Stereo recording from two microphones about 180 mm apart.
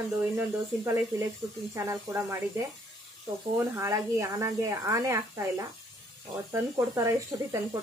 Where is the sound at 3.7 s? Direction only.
15° right (ahead or behind).